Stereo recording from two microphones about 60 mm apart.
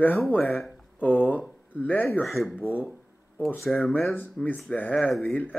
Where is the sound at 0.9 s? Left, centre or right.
Left.